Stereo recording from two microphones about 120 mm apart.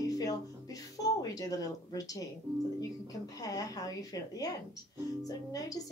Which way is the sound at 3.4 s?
30° left (ahead or behind).